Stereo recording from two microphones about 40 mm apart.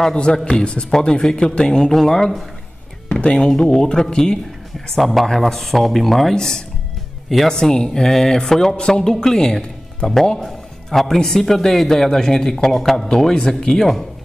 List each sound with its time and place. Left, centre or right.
0.0 s speech: left
0.8 s a man's voice: centre
4.9 s speech: centre
6.3 s a man's voice: centre
7.2 s a man's voice: centre; by 9.0 s left
9.0 s a man's voice: centre